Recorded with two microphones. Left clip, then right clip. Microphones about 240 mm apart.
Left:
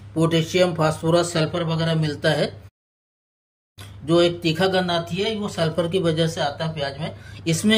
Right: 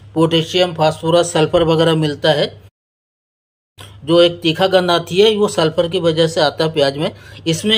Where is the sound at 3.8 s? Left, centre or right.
Centre.